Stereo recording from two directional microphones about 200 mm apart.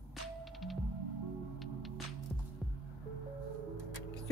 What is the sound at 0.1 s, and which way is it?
Music, centre (ahead or behind).